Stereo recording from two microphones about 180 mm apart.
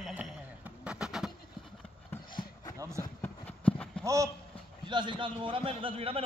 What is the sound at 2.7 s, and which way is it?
Speech, 15° right (ahead or behind).